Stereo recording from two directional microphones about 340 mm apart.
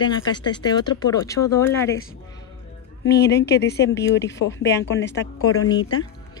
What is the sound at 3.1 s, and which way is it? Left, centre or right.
A woman's voice, left.